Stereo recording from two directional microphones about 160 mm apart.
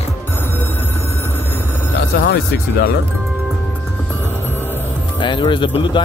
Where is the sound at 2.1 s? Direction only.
90° left.